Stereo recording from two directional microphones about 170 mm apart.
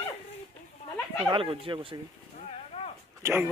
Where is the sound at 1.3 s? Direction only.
30° right (ahead or behind).